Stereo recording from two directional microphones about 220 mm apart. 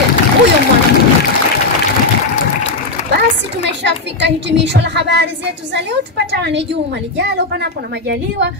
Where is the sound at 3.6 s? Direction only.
50° right (ahead or behind).